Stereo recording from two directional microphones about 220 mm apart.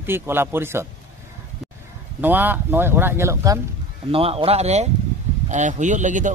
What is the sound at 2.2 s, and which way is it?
Speech, 10° right (ahead or behind).